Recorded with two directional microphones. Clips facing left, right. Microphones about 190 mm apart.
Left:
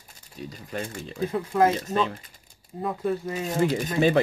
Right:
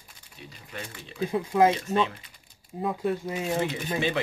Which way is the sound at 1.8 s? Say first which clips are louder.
Even; 45° left (ahead or behind).